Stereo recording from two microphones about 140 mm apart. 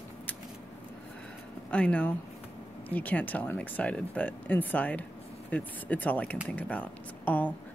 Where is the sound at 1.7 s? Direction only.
10° left (ahead or behind).